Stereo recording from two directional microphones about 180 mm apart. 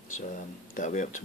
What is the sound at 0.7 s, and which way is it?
Speech, 45° left (ahead or behind).